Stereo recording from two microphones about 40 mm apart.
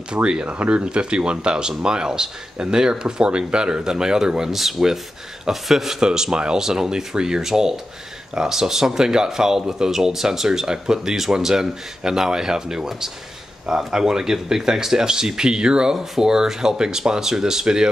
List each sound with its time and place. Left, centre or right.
0.1 s speech: right; by 5.9 s centre
5.9 s speech: centre